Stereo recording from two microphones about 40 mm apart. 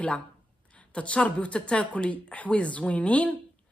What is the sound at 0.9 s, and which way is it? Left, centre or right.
A woman's voice, left.